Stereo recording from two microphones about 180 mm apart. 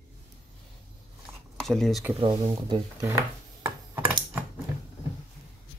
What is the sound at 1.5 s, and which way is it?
Speech, centre (ahead or behind).